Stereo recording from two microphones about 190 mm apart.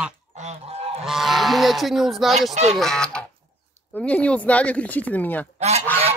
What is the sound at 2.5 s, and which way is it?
Speech, 35° right (ahead or behind).